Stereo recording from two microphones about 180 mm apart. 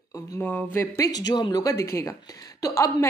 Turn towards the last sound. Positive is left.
turn(degrees=15)  # may be behind; listen again after turning